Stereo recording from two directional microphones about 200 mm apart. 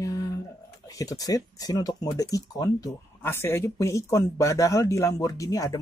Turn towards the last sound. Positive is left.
turn(degrees=15)  # may be behind; listen again after turning